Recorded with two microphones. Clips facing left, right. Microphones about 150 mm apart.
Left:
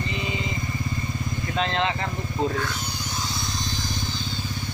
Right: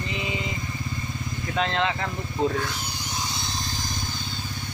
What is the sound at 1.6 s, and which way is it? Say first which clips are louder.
Speech: even; centre (ahead or behind).